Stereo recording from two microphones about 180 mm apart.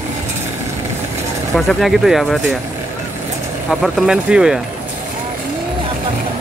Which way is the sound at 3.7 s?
Centre (ahead or behind).